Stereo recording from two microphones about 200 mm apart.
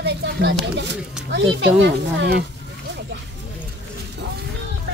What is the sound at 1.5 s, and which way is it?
Speech, 60° right (ahead or behind).